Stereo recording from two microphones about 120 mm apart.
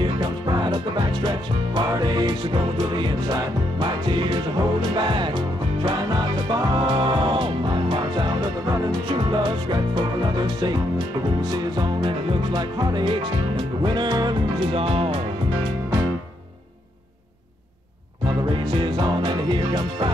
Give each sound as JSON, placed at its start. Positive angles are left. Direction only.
{"t": 0.2, "sound": "music", "side_deg": -35}
{"t": 15.9, "sound": "music", "side_deg": -30}
{"t": 18.5, "sound": "music", "side_deg": -40}